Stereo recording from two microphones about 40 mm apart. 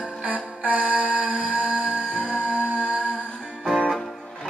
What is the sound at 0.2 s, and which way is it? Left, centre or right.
Music, right.